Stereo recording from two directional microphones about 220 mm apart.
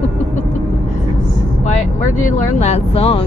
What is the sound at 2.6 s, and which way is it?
Speech, 30° left (ahead or behind).